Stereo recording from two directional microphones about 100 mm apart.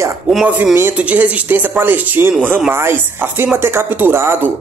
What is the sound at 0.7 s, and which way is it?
Speech, 20° right (ahead or behind).